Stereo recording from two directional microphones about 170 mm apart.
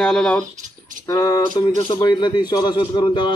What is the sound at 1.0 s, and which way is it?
Speech, 20° left (ahead or behind).